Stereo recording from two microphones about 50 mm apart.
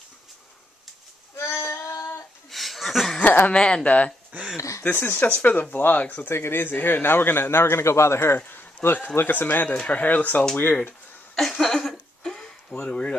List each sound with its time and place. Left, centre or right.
1.3 s a sound: left
2.0 s female singing: left
2.5 s a sound: centre
3.2 s chuckle: left
3.5 s speech: centre
3.8 s speech: left
4.6 s speech: left
4.8 s a man's voice: left
6.3 s a man's voice: left
8.4 s speech: left
11.3 s a sound: centre
12.8 s speech: left